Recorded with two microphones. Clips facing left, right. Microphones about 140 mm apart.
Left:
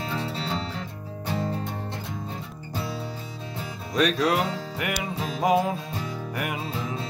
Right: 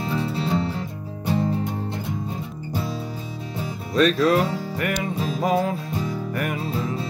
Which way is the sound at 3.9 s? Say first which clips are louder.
Right 5 dB; 15° left (ahead or behind).